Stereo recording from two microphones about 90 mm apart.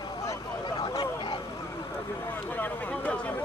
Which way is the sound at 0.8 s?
60° left (ahead or behind).